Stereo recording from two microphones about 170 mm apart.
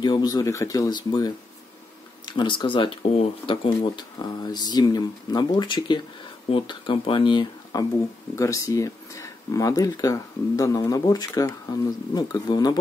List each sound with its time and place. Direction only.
0.0 s speech: 25° left (ahead or behind)
2.3 s speech: 30° left (ahead or behind)